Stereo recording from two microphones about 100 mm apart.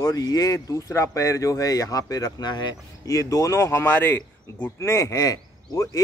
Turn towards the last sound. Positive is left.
turn(degrees=35)  # may be behind; listen again after turning